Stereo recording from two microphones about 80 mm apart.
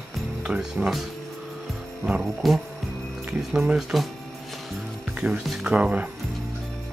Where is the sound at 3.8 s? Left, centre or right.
Centre.